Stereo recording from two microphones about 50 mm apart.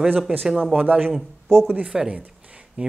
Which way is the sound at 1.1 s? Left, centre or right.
Centre.